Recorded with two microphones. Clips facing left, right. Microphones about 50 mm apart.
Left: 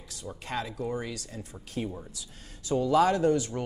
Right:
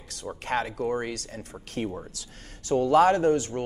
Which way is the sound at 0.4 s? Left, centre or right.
Right.